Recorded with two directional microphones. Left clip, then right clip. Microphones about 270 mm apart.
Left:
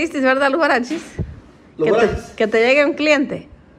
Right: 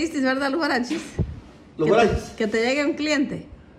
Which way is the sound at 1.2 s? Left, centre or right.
Centre.